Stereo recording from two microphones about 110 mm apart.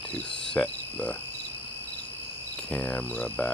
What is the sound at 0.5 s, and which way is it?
Cricket, 10° left (ahead or behind).